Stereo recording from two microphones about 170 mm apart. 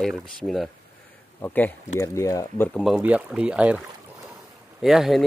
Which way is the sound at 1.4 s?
10° left (ahead or behind).